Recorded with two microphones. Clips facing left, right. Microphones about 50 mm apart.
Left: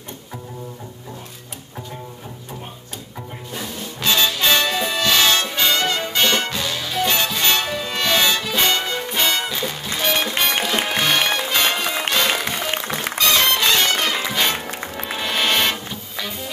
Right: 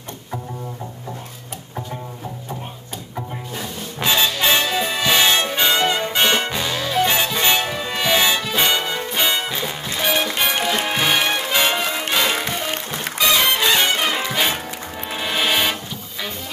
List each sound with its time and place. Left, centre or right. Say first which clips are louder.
4.0 s music: even; centre
4.6 s music: even; centre
5.0 s music: right 1 dB; centre
13.2 s music: right 1 dB; centre